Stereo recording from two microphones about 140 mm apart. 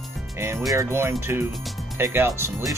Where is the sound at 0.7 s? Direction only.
20° right (ahead or behind).